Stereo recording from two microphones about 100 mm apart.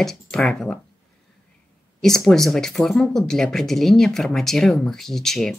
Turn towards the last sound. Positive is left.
turn(degrees=5)  # may be behind; listen again after turning